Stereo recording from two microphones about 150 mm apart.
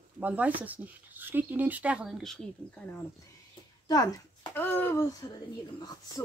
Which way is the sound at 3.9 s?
25° left (ahead or behind).